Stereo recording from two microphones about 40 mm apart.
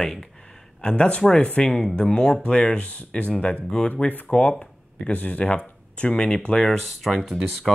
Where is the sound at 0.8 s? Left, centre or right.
Left.